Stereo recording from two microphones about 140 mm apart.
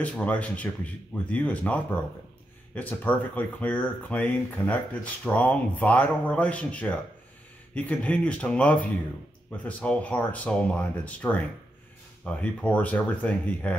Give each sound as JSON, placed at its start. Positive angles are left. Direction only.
{"t": 0.0, "sound": "speech", "side_deg": 10}